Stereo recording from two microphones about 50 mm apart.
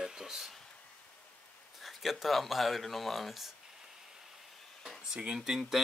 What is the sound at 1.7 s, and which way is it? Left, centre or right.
Speech, centre.